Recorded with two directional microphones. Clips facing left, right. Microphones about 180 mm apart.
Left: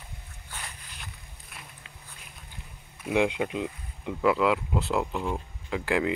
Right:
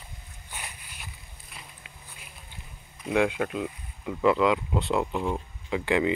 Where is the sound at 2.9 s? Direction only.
5° left (ahead or behind).